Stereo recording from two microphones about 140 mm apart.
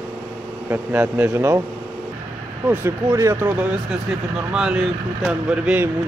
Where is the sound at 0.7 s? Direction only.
15° right (ahead or behind).